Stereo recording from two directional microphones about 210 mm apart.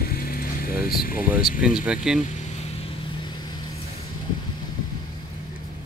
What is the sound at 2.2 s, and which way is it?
Vehicle, 35° left (ahead or behind).